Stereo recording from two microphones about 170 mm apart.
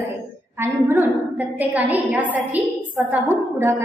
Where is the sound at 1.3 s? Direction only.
10° right (ahead or behind).